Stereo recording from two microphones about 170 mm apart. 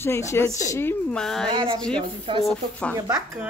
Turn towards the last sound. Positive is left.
turn(degrees=-15)  # may be behind; listen again after turning